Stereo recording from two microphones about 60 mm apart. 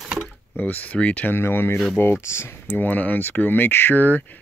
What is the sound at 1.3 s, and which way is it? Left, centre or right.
Speech, left.